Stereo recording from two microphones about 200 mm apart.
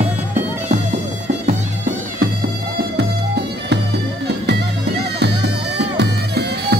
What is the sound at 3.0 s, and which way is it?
Music, 55° right (ahead or behind).